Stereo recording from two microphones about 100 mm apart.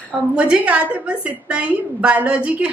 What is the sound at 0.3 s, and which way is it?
Speech, 10° right (ahead or behind).